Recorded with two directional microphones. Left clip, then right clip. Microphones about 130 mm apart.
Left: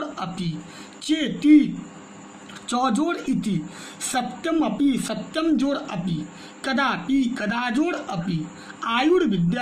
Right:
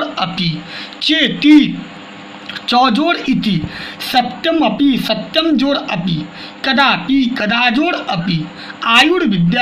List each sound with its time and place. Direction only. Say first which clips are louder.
0.2 s a man's voice: right 13 dB; 15° right (ahead or behind)
2.7 s a man's voice: right 11 dB; 20° right (ahead or behind)